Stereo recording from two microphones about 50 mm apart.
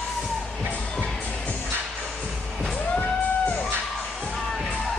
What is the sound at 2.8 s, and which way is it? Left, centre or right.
Music, left.